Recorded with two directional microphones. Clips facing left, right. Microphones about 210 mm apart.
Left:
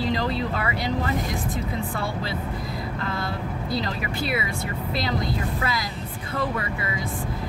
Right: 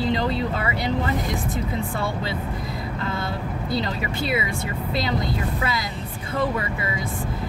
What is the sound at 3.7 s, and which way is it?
Speech, 25° right (ahead or behind).